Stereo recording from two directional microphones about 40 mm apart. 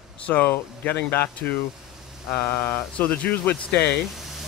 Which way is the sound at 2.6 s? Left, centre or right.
Left.